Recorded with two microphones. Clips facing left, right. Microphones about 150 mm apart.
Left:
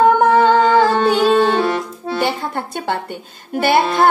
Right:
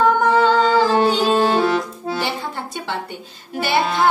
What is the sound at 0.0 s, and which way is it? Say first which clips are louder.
Music: left 4 dB; 55° left (ahead or behind).